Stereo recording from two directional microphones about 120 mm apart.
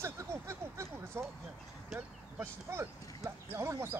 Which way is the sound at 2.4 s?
20° right (ahead or behind).